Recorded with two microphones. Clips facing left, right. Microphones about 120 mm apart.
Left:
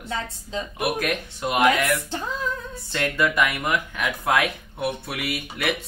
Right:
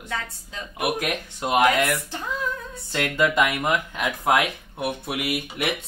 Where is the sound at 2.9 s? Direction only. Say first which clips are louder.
Right 1 dB; 20° right (ahead or behind).